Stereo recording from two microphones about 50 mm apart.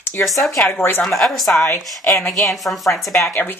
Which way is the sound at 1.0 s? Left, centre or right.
Centre.